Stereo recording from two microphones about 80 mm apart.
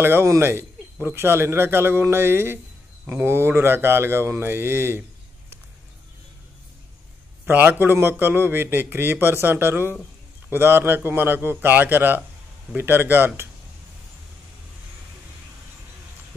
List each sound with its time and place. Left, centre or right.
0.0 s speech: right
7.4 s speech: right